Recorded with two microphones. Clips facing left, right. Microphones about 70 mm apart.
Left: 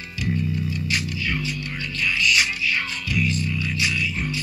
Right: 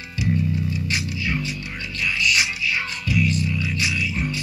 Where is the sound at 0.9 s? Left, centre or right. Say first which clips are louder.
Left 1 dB; centre.